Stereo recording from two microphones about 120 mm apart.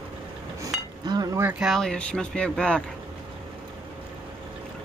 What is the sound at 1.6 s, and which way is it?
Speech, centre (ahead or behind).